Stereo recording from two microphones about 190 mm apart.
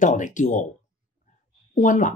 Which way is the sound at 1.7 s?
40° left (ahead or behind).